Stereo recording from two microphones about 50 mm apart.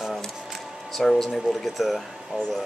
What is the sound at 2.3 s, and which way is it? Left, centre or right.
Speech, right.